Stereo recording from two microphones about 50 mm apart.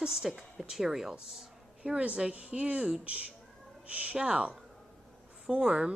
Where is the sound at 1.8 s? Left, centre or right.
Right.